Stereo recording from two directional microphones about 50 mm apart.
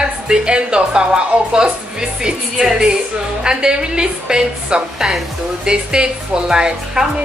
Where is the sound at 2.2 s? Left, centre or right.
Centre.